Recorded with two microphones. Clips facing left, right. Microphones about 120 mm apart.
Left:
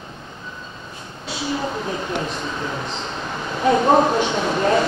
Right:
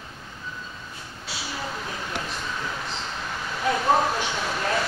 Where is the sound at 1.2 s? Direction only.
5° right (ahead or behind).